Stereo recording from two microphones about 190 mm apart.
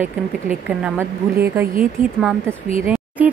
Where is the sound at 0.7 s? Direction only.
5° right (ahead or behind).